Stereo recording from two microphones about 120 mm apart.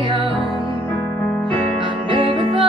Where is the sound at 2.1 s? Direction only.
45° right (ahead or behind).